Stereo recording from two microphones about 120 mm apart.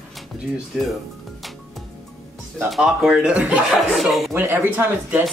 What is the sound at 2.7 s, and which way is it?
A woman's voice, centre (ahead or behind).